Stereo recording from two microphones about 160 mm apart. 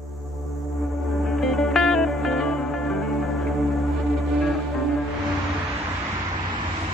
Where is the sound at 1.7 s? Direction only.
Centre (ahead or behind).